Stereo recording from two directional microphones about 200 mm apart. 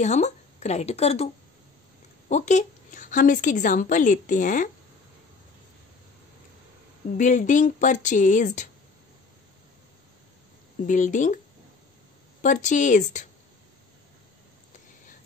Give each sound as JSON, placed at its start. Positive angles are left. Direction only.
{"t": 0.0, "sound": "a woman's voice", "side_deg": 35}
{"t": 7.2, "sound": "a woman's voice", "side_deg": 40}
{"t": 10.8, "sound": "a woman's voice", "side_deg": 40}
{"t": 12.4, "sound": "a woman's voice", "side_deg": 35}